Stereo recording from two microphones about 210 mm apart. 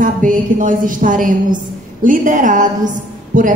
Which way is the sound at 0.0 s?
40° right (ahead or behind).